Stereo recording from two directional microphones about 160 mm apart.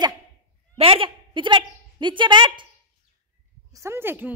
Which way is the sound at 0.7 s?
35° right (ahead or behind).